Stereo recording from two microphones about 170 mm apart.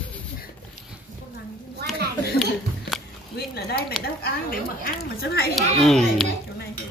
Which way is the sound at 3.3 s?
65° left (ahead or behind).